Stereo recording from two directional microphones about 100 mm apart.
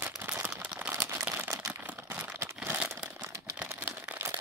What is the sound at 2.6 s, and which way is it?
Crumpling, 20° right (ahead or behind).